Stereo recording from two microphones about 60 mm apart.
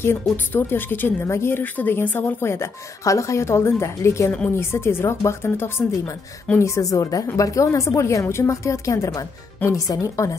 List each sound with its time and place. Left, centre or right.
0.0 s a woman's voice: left
1.6 s a woman's voice: left
2.4 s speech: left
4.6 s speech: left
6.6 s a woman's voice: left